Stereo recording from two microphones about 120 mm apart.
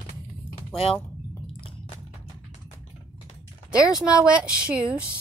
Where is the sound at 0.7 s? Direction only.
55° left (ahead or behind).